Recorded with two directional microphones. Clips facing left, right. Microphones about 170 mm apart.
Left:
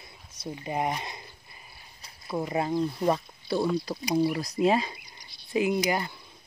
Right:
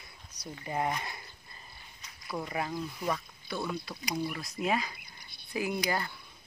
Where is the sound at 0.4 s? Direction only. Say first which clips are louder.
Left 3 dB; 20° left (ahead or behind).